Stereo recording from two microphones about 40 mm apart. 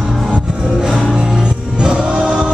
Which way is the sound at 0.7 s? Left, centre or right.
Centre.